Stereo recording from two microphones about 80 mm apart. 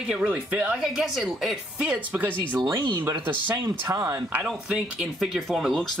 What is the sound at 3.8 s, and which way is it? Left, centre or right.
Speech, right.